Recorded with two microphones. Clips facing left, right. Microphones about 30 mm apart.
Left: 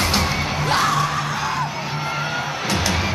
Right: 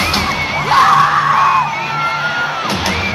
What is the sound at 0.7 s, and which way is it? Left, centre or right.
Music, right.